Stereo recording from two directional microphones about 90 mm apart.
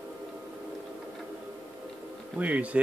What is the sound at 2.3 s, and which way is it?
Speech, 15° right (ahead or behind).